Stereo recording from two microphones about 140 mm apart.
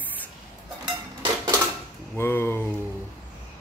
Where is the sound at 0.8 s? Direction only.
30° right (ahead or behind).